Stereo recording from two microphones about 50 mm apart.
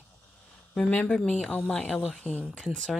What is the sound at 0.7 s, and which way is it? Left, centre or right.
Speech, left.